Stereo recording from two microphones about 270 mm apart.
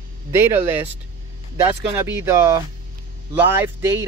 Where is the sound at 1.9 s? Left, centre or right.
Centre.